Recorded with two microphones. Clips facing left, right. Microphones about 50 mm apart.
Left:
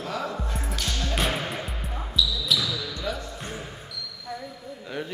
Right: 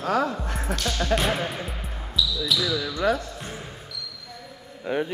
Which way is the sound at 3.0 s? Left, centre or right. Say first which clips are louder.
Right 9 dB; right.